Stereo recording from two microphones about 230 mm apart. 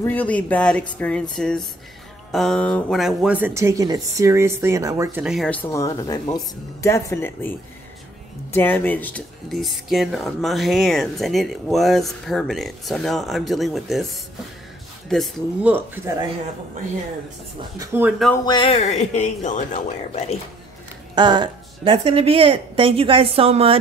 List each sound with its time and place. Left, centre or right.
0.0 s speech: centre
5.2 s speech: centre
8.5 s speech: centre
17.7 s speech: centre
18.4 s speech: centre
21.1 s speech: centre